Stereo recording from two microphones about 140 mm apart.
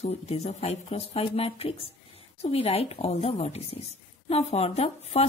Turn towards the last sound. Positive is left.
turn(degrees=45)  # may be behind; listen again after turning